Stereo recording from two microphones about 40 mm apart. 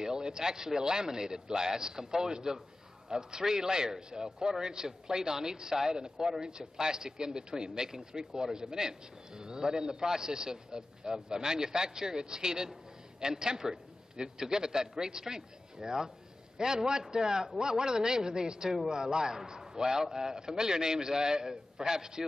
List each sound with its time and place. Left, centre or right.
0.0 s a man's voice: centre